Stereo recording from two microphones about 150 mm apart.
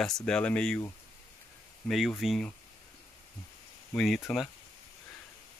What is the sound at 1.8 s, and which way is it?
Speech, centre (ahead or behind).